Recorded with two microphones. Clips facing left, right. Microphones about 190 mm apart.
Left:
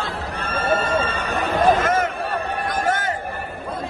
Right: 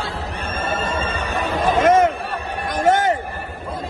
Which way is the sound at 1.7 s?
25° right (ahead or behind).